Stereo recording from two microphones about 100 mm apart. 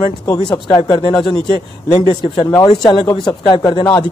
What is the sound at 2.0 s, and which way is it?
Speech, 60° left (ahead or behind).